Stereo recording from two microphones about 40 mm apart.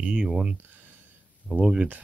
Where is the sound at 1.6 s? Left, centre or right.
Right.